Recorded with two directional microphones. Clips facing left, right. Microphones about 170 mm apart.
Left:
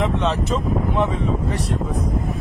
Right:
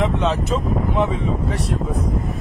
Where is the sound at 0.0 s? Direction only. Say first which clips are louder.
Right 1 dB; centre (ahead or behind).